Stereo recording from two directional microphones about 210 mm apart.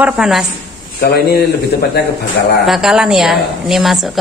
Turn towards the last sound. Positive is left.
turn(degrees=0)  # may be behind; listen again after turning